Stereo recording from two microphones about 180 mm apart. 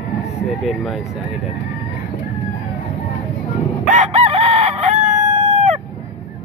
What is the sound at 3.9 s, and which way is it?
Chicken, 40° right (ahead or behind).